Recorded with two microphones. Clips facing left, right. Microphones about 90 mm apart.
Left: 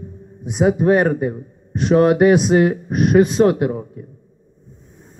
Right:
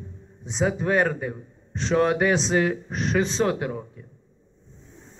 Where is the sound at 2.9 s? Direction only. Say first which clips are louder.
Left 13 dB; 50° left (ahead or behind).